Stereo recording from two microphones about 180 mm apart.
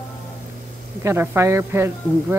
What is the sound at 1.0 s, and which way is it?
Speech, 15° right (ahead or behind).